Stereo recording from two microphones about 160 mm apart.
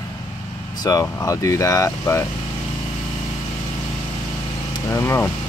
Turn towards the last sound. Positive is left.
turn(degrees=15)  # may be behind; listen again after turning